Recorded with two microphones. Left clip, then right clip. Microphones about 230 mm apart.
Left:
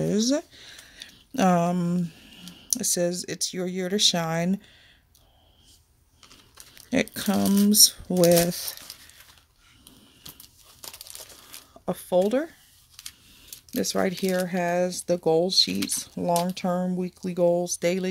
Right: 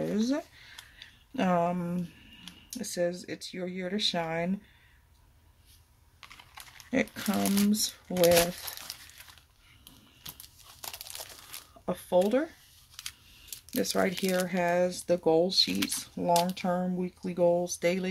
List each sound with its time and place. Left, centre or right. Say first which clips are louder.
0.0 s a sound: left 6 dB; left
2.7 s speech: left 6 dB; left
6.9 s speech: left 4 dB; left
8.9 s crumpling: right 1 dB; centre
11.8 s speech: left 3 dB; left
13.7 s speech: left 3 dB; left